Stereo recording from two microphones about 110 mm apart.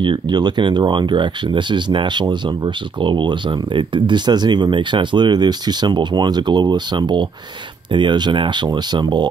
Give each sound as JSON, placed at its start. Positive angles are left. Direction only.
{"t": 0.0, "sound": "speech", "side_deg": -45}